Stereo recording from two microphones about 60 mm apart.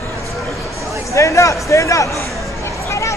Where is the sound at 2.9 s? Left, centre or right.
Left.